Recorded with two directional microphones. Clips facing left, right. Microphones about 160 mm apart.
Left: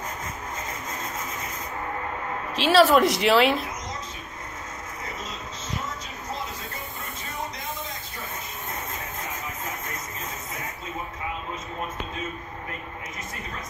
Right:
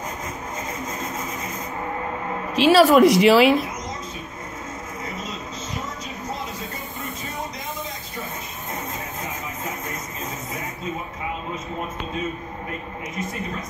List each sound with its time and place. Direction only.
2.5 s speech: centre (ahead or behind)